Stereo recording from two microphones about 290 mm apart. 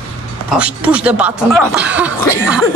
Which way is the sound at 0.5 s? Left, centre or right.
Centre.